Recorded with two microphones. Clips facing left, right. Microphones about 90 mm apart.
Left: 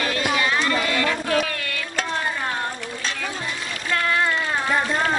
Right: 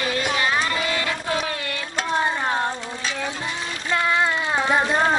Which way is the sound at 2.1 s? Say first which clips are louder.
Right 6 dB; 20° right (ahead or behind).